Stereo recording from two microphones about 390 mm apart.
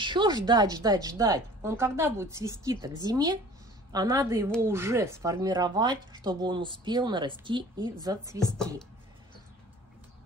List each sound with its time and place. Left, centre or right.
0.0 s speech: centre
8.4 s speech: centre